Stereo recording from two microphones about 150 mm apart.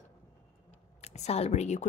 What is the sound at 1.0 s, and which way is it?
Speech, 45° left (ahead or behind).